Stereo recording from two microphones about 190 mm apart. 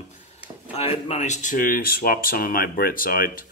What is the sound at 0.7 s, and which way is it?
Speech, 30° left (ahead or behind).